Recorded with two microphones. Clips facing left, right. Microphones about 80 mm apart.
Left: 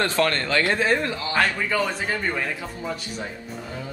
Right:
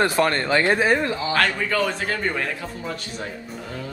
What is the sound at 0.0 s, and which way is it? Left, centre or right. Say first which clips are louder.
A man's voice: right 2 dB; centre.